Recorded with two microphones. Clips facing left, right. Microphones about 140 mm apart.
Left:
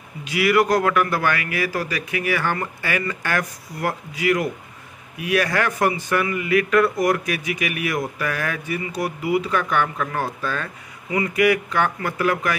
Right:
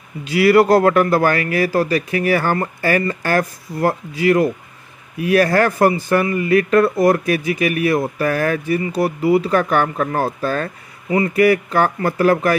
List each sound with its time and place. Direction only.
0.2 s a man's voice: 35° right (ahead or behind)